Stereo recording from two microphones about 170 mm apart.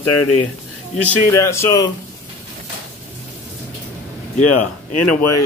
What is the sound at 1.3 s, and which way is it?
Speech, 15° left (ahead or behind).